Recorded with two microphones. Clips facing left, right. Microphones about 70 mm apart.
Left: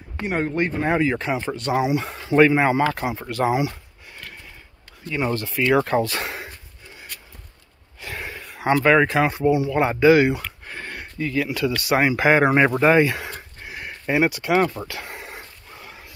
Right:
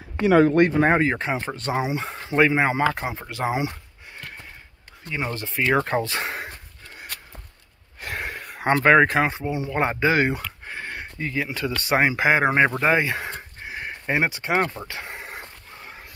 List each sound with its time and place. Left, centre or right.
0.2 s speech: right
0.8 s speech: right
2.3 s speech: centre
2.6 s speech: right
5.1 s speech: centre
8.0 s a sound: right
9.7 s speech: right
10.6 s speech: right
13.2 s a sound: right